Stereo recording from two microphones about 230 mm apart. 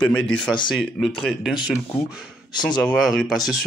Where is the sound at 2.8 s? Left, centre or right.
Centre.